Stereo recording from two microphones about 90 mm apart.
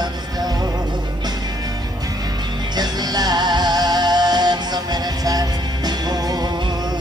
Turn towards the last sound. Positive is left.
turn(degrees=-45)  # may be behind; listen again after turning